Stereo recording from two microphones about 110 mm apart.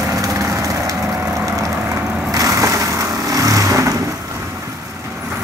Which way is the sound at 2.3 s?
30° right (ahead or behind).